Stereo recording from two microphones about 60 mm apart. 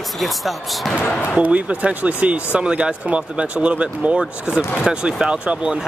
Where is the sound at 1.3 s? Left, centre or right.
Right.